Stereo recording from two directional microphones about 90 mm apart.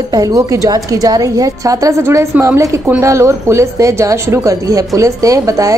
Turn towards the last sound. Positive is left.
turn(degrees=-40)  # may be behind; listen again after turning